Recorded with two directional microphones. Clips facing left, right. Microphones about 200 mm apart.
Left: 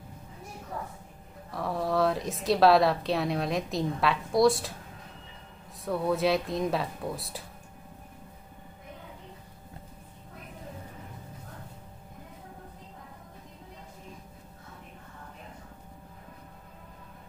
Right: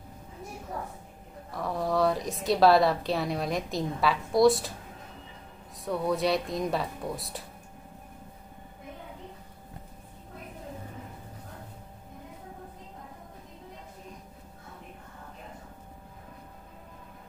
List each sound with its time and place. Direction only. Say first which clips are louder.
1.5 s a woman's voice: even; centre (ahead or behind)
5.9 s a woman's voice: left 1 dB; centre (ahead or behind)